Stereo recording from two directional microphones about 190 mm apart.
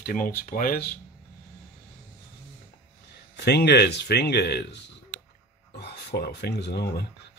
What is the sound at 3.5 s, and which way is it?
Speech, 60° left (ahead or behind).